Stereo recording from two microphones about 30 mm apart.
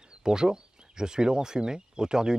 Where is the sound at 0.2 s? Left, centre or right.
Right.